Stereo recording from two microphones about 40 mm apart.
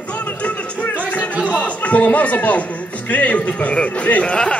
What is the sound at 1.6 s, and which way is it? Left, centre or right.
Speech, left.